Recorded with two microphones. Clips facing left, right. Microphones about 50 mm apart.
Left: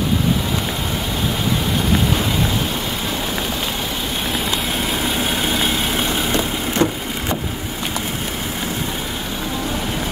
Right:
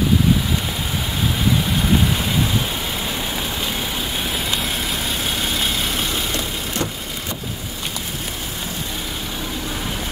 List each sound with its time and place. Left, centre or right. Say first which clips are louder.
6.3 s vehicle: left 5 dB; left